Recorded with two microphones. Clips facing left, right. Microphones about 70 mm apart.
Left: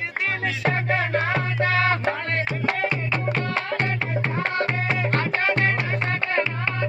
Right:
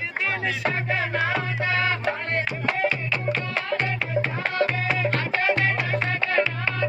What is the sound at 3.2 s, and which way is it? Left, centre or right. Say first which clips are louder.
Music: even; left.